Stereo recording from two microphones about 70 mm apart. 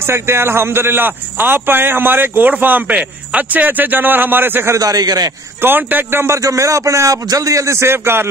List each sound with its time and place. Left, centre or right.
0.0 s speech: right
4.7 s speech: right
5.6 s speech: right
6.4 s a man's voice: right